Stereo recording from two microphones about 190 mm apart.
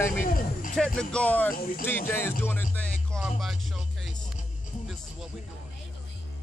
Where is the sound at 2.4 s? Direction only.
10° left (ahead or behind).